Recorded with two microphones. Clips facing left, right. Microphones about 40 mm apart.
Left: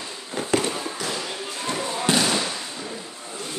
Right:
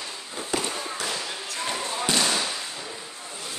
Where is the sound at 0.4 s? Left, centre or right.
Left.